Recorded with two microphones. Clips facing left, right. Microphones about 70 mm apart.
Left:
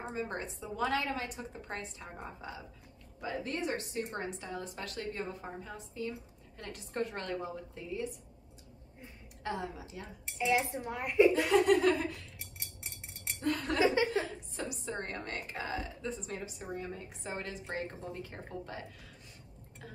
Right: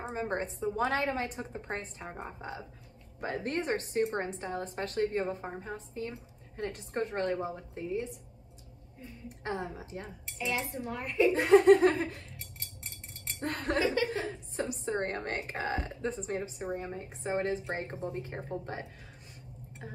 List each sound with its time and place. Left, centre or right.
0.1 s a woman's voice: right
9.4 s a woman's voice: right
10.4 s a woman's voice: centre
11.3 s a woman's voice: right
13.4 s laughter: right
14.2 s a woman's voice: right